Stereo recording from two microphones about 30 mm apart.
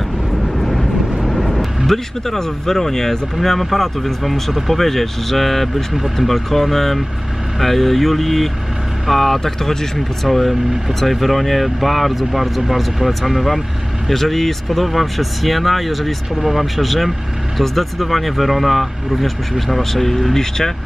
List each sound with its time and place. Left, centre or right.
0.6 s vehicle: centre
1.9 s speech: centre
20.3 s speech: centre